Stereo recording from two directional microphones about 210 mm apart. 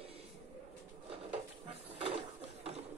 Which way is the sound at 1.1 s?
30° right (ahead or behind).